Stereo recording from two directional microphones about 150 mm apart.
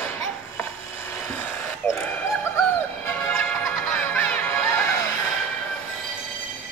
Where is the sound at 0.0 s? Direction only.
15° left (ahead or behind).